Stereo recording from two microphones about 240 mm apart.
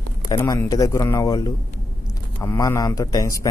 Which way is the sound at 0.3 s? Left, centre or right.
Centre.